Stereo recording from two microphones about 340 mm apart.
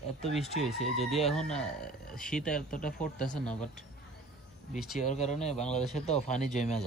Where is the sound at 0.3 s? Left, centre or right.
Centre.